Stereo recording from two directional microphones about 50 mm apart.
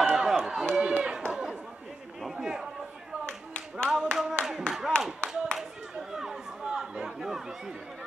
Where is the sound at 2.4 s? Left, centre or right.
Centre.